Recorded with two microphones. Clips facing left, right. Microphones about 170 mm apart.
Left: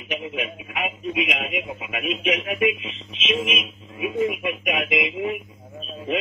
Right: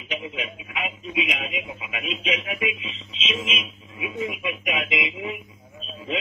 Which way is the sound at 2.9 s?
60° left (ahead or behind).